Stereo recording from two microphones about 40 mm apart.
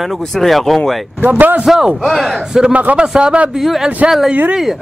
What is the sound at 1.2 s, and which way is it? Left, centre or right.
Speech, right.